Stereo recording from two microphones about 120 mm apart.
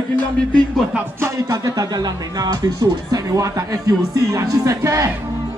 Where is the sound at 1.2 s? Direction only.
25° right (ahead or behind).